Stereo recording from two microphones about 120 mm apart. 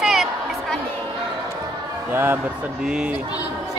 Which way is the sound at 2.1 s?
15° right (ahead or behind).